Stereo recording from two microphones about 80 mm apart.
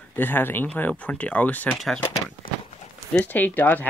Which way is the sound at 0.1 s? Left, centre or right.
Left.